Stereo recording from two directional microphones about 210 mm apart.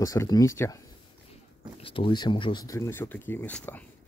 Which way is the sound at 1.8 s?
25° left (ahead or behind).